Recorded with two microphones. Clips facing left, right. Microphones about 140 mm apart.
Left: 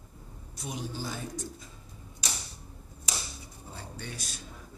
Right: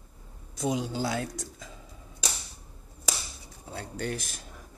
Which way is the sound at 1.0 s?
80° right.